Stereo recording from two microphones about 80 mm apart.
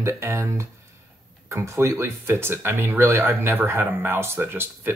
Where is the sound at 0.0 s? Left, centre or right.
Right.